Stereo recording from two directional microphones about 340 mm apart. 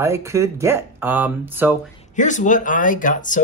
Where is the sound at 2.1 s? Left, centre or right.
Left.